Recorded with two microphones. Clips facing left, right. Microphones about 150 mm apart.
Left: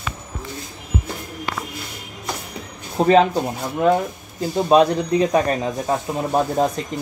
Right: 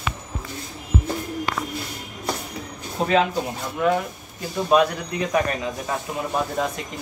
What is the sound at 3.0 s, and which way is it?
Speech, 35° left (ahead or behind).